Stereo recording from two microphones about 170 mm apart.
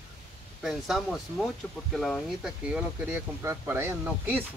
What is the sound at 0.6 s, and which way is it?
Speech, centre (ahead or behind).